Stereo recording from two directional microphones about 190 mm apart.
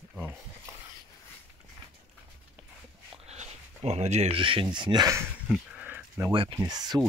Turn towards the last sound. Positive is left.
turn(degrees=-20)  # may be behind; listen again after turning